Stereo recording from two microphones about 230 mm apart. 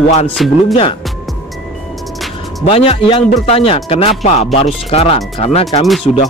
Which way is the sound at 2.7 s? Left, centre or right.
Left.